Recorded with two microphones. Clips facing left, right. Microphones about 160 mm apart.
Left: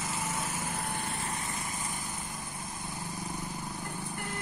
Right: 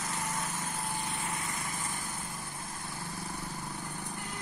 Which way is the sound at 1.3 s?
25° left (ahead or behind).